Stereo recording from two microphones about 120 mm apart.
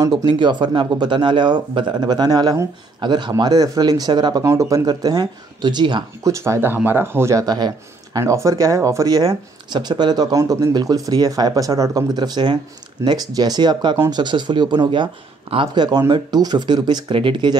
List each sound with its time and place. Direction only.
0.3 s speech: 40° right (ahead or behind)
6.4 s speech: 20° right (ahead or behind); by 17.6 s 40° right (ahead or behind)